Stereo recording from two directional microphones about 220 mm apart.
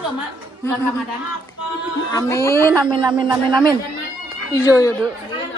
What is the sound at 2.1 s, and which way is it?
Speech, 15° left (ahead or behind).